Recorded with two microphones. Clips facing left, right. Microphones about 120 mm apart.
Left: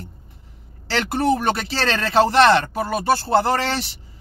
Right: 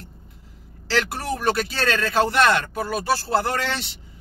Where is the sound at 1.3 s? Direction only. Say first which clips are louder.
Left 3 dB; 25° left (ahead or behind).